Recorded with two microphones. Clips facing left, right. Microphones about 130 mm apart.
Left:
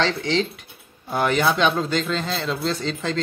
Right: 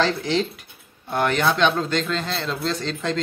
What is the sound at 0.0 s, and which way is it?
Speech, centre (ahead or behind).